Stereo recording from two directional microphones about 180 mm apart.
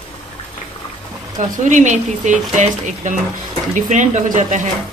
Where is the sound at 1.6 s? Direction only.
40° right (ahead or behind).